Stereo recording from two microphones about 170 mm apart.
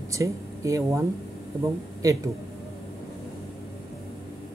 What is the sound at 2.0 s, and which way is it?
Speech, 20° right (ahead or behind).